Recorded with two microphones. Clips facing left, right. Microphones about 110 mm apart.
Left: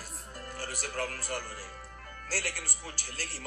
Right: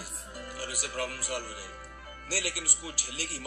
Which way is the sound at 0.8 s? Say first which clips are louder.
Even; 45° left (ahead or behind).